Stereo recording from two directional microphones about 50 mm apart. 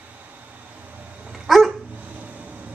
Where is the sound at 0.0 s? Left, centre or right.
Right.